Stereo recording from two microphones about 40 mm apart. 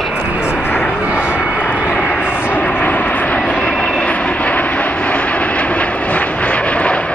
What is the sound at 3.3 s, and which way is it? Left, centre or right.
Vehicle, left.